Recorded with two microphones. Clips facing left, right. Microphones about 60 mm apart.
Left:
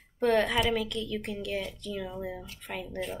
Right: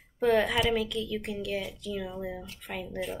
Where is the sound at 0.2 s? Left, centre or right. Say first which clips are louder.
Even; centre.